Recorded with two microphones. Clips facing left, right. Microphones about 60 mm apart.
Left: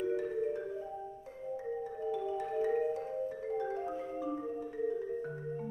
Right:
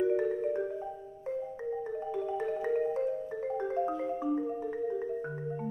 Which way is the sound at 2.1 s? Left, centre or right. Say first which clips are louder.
Right 2 dB; right.